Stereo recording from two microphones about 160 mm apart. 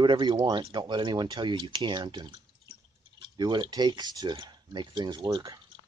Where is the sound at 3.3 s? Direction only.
25° right (ahead or behind).